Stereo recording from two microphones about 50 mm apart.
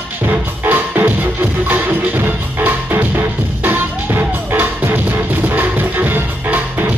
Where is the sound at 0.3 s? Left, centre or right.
Right.